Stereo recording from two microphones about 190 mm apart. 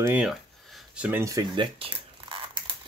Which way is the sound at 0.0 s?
5° right (ahead or behind).